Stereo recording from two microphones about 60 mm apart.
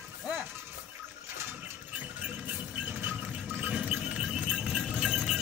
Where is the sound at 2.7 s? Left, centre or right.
Right; by 4.4 s centre.